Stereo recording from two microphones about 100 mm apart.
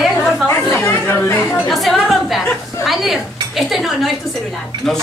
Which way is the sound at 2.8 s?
Centre (ahead or behind).